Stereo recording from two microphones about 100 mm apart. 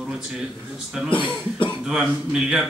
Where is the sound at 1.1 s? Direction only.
55° left (ahead or behind).